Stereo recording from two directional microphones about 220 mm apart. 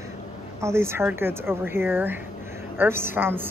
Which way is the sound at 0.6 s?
10° right (ahead or behind).